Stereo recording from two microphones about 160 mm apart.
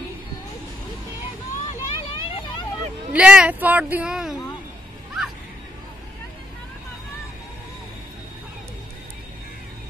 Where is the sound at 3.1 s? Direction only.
5° right (ahead or behind).